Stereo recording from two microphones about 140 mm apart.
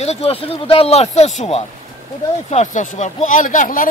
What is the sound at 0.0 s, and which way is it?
Speech, 50° left (ahead or behind).